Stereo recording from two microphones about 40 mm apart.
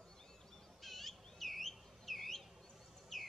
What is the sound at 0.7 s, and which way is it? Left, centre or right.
Bird, centre.